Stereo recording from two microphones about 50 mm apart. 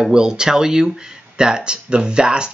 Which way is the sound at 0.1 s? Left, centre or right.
Centre.